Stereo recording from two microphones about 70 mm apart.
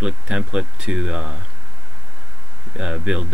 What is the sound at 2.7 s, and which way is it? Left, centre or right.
Speech, centre.